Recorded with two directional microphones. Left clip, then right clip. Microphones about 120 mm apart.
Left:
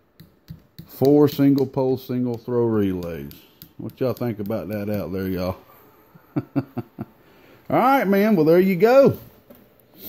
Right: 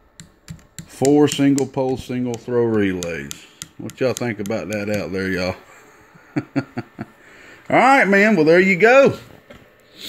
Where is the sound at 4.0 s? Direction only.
5° left (ahead or behind).